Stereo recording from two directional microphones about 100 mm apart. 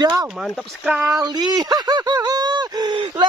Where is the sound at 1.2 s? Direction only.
45° right (ahead or behind).